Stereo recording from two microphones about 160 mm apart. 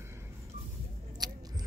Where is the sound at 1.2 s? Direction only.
25° right (ahead or behind).